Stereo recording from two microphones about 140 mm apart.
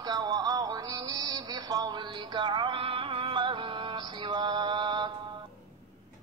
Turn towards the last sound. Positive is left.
turn(degrees=-35)  # may be behind; listen again after turning